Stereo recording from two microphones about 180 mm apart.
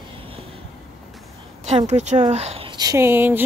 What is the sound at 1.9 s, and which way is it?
Speech, 40° right (ahead or behind).